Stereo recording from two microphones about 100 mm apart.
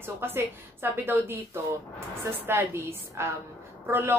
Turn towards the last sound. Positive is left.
turn(degrees=-25)  # may be behind; listen again after turning